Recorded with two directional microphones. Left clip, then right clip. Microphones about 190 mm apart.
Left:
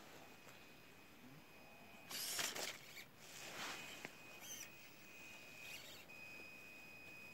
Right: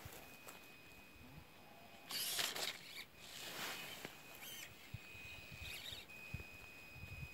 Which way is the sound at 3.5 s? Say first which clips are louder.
Right 1 dB; 30° right (ahead or behind).